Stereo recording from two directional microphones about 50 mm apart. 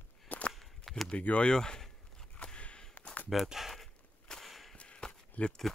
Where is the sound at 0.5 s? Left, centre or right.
Centre.